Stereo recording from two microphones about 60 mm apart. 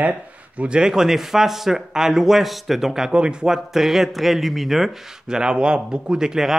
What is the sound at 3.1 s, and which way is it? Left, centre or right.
Speech, centre.